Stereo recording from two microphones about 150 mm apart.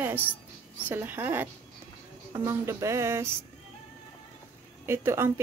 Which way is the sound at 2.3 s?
20° right (ahead or behind).